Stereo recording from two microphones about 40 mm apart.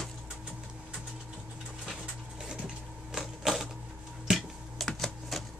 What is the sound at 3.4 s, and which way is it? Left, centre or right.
Typewriter, centre.